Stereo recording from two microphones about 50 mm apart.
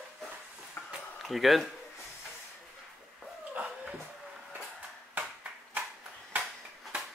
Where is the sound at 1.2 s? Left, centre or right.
Centre.